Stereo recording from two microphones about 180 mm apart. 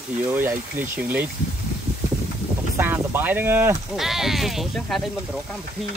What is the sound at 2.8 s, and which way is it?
Speech, 10° right (ahead or behind).